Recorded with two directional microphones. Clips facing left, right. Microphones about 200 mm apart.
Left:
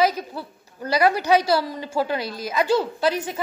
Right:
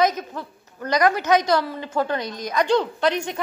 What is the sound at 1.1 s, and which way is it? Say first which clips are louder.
Speech: left 1 dB; 35° left (ahead or behind).